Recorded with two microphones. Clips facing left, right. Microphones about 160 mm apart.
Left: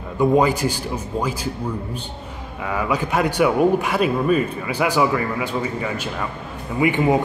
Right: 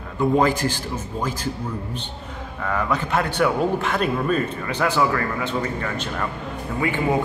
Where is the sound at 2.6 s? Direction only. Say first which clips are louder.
Left 1 dB; 10° left (ahead or behind).